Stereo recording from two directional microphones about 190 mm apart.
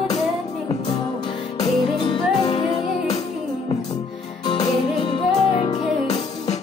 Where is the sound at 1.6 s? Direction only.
25° left (ahead or behind).